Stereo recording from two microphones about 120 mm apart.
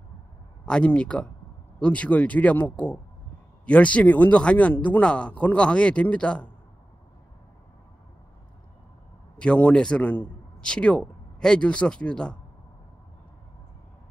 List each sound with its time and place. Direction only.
0.7 s speech: 10° left (ahead or behind)
9.4 s a man's voice: 10° left (ahead or behind)